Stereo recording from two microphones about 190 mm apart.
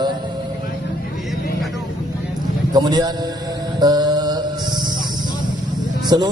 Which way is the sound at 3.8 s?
20° right (ahead or behind).